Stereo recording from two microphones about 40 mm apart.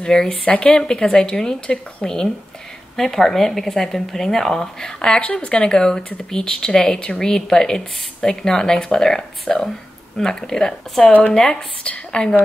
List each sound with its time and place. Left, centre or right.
0.0 s a woman's voice: centre
11.1 s speech: left
11.8 s a woman's voice: left